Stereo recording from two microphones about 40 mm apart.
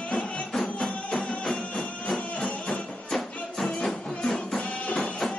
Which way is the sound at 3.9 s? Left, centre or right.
Centre.